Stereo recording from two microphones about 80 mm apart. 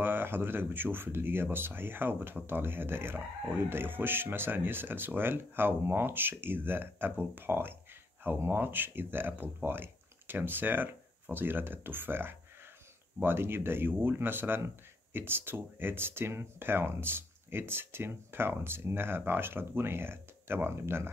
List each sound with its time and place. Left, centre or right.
0.0 s speech: right